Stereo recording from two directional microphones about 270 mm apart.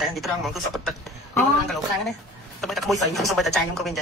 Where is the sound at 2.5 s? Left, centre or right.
Centre.